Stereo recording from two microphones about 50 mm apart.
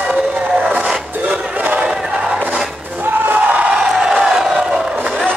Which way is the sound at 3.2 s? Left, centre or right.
Right.